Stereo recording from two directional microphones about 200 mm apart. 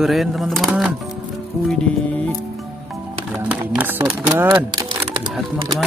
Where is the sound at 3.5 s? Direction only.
10° right (ahead or behind).